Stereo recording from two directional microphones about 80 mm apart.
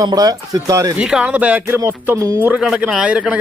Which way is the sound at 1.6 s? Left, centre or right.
Right.